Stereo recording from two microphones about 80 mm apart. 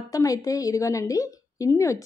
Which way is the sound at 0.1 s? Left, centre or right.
Left.